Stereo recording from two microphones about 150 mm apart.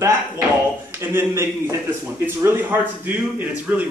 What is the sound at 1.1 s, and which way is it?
Speech, 15° right (ahead or behind).